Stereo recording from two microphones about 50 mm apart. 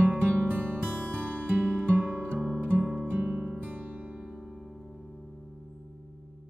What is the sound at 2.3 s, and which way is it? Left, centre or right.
Music, centre.